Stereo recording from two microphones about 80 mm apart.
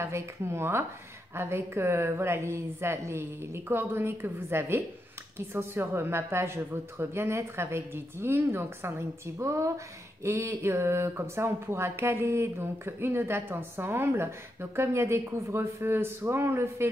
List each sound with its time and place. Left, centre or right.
0.0 s speech: right